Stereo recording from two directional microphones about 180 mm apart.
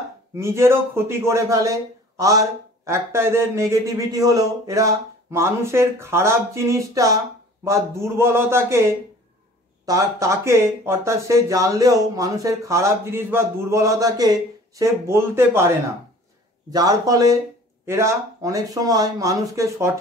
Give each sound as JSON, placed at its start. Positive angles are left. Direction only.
{"t": 0.4, "sound": "speech", "side_deg": -15}
{"t": 16.7, "sound": "speech", "side_deg": -20}